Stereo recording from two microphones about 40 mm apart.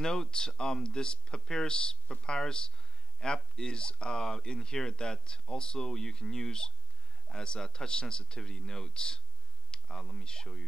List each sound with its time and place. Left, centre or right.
0.0 s speech: centre